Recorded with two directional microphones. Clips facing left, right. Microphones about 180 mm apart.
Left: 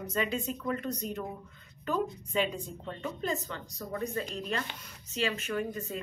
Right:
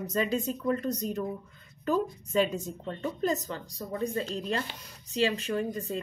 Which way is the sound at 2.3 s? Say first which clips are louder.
Right 4 dB; 40° right (ahead or behind).